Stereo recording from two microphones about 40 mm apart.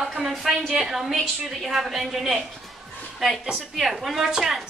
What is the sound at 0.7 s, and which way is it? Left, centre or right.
A woman's voice, centre.